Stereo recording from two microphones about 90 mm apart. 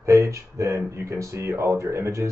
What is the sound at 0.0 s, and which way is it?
Speech, 35° right (ahead or behind).